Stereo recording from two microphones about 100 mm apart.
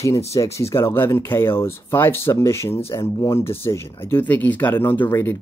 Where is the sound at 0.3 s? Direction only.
30° left (ahead or behind).